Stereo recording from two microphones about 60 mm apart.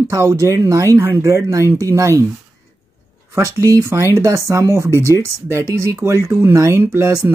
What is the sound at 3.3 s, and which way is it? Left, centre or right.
Speech, right.